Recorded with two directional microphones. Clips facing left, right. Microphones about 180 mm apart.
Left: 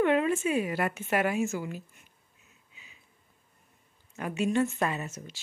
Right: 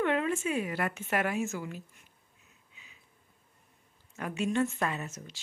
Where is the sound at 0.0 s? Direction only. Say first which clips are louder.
Left 4 dB; 10° left (ahead or behind).